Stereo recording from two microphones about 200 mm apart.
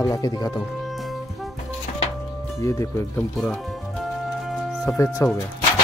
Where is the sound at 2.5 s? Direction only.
15° left (ahead or behind).